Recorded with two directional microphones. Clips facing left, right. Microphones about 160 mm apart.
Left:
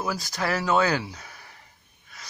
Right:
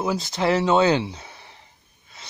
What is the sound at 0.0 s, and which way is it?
Speech, 25° right (ahead or behind).